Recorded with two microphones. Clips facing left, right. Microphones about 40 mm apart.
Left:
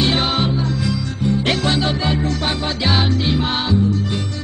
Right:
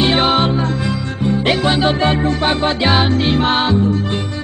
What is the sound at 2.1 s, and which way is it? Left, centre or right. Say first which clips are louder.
Music: right 5 dB; right.